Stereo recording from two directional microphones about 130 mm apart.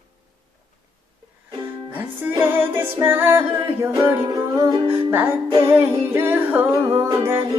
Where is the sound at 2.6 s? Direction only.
15° right (ahead or behind).